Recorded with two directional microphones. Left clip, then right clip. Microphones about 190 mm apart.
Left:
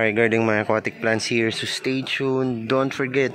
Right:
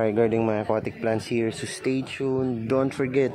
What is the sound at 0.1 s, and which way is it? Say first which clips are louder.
Speech: left 3 dB; centre (ahead or behind).